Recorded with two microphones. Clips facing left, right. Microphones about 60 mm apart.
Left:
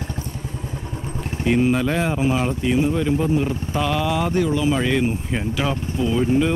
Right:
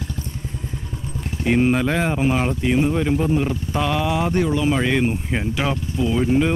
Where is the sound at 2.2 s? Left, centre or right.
Right.